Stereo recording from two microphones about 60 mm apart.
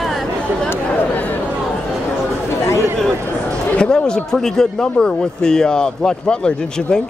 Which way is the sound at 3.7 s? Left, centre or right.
Centre.